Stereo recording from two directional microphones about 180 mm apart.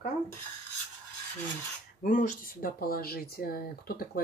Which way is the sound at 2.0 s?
45° left (ahead or behind).